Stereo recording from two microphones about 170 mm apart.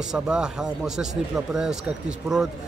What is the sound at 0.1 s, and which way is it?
A man's voice, 5° right (ahead or behind).